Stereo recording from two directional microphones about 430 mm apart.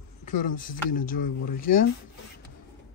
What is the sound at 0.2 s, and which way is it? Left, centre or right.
Speech, centre.